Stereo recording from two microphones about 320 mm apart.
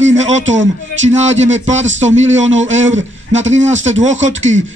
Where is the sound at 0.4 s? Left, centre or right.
Right.